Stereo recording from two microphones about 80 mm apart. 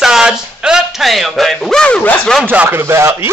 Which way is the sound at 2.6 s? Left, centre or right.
Right.